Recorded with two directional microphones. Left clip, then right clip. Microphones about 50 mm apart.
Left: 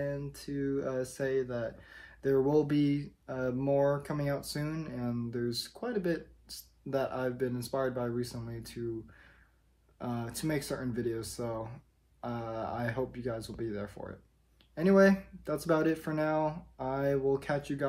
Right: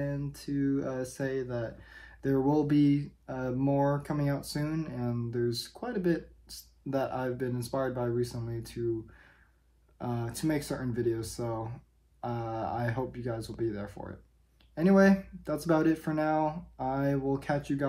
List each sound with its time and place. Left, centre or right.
0.1 s speech: left
9.9 s speech: left